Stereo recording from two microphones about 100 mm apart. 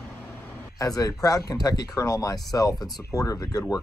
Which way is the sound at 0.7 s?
35° left (ahead or behind).